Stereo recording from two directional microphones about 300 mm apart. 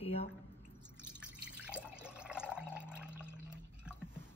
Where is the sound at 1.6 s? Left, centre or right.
Centre.